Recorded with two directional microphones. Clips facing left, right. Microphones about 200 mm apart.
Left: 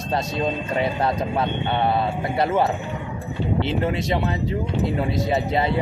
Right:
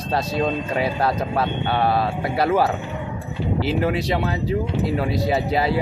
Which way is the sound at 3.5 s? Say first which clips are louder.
Right 2 dB; centre (ahead or behind).